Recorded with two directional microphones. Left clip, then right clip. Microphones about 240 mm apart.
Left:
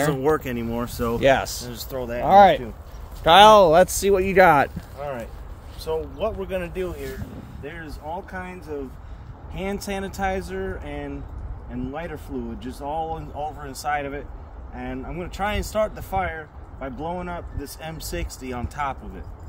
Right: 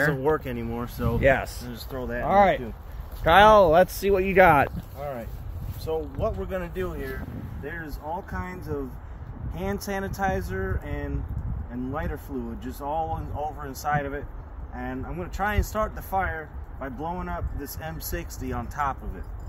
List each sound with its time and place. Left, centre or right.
0.1 s speech: left
1.2 s speech: left
1.6 s speech: left; by 4.2 s centre
4.2 s speech: centre
5.9 s speech: centre